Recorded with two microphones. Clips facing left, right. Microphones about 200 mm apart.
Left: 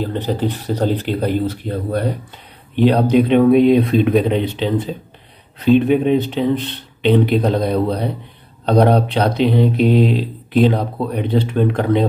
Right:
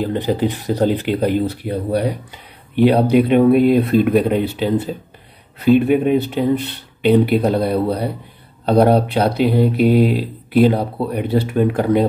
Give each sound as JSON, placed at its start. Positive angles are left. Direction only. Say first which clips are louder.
{"t": 0.0, "sound": "speech", "louder": "right 2 dB", "side_deg": -10}